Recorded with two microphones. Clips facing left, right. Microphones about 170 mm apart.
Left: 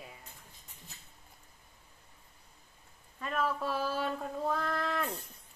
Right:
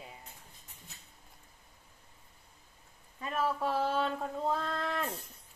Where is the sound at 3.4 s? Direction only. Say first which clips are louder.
Right 2 dB; 25° right (ahead or behind).